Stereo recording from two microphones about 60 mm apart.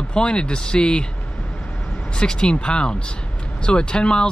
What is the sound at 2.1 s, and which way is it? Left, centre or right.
Speech, centre.